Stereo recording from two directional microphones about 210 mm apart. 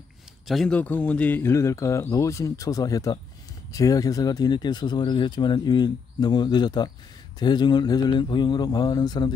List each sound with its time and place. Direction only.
0.5 s speech: 5° left (ahead or behind); by 9.3 s 20° left (ahead or behind)